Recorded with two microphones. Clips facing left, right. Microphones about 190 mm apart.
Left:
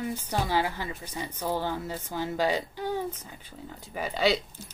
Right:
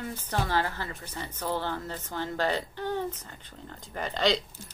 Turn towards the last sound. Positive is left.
turn(degrees=10)  # may be behind; listen again after turning